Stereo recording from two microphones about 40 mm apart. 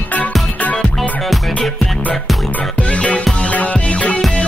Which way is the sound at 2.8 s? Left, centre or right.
Left.